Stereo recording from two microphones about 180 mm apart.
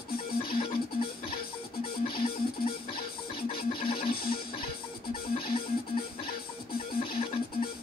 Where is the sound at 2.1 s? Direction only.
30° left (ahead or behind).